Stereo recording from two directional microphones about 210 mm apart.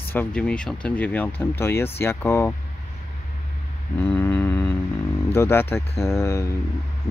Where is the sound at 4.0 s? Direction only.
10° left (ahead or behind).